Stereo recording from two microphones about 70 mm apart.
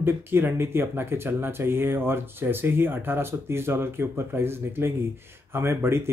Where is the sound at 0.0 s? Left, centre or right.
Right.